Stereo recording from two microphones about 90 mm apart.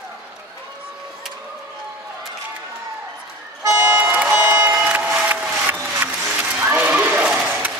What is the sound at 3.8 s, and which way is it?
Music, 20° right (ahead or behind).